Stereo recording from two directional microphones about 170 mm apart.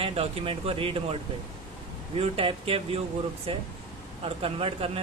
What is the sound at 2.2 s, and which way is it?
Speech, 35° right (ahead or behind).